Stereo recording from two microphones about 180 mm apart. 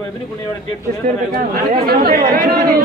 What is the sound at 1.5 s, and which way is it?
Speech, 60° right (ahead or behind).